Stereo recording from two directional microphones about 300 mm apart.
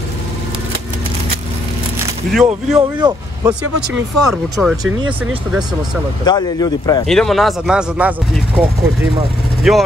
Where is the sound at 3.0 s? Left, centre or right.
Centre.